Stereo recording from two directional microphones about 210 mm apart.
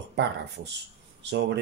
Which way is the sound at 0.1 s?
55° right (ahead or behind).